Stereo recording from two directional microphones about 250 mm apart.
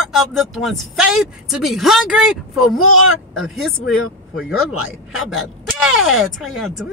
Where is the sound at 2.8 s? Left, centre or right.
Left.